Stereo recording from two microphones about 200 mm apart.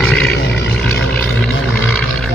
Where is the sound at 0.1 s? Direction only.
5° left (ahead or behind).